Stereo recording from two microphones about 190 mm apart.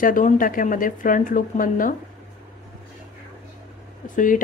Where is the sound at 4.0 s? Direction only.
45° left (ahead or behind).